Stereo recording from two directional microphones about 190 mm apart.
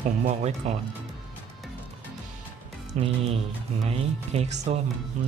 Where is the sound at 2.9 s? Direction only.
35° right (ahead or behind).